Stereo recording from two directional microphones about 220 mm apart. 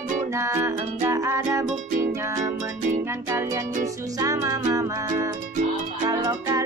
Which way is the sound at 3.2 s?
15° right (ahead or behind).